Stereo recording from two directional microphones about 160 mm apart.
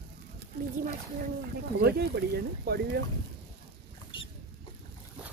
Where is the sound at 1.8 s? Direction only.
90° right.